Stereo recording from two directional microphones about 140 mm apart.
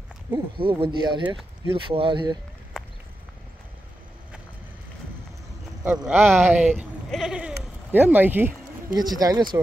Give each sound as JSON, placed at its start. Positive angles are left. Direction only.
{"t": 0.3, "sound": "speech", "side_deg": -40}
{"t": 2.8, "sound": "a sound", "side_deg": 0}
{"t": 5.9, "sound": "speech", "side_deg": -15}
{"t": 8.9, "sound": "speech", "side_deg": -30}